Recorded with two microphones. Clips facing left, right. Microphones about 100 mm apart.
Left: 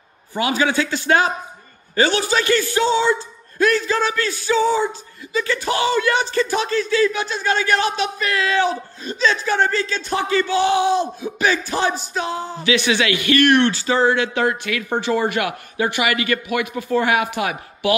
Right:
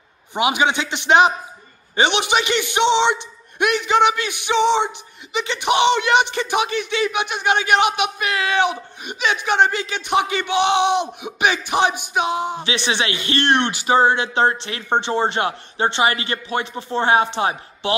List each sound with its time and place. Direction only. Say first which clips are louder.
0.4 s a man's voice: even; 20° right (ahead or behind)